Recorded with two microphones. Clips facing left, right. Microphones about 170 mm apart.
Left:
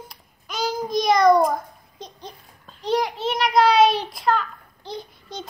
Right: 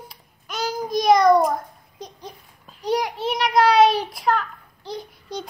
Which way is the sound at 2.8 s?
10° right (ahead or behind).